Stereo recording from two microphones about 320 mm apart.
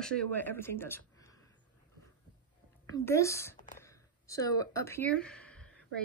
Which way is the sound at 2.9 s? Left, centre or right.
Centre.